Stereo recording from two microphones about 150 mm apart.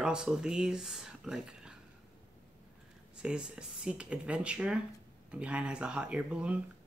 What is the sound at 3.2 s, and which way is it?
Speech, 5° right (ahead or behind).